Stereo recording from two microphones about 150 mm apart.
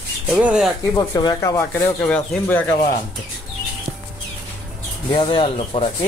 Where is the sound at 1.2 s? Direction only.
30° left (ahead or behind).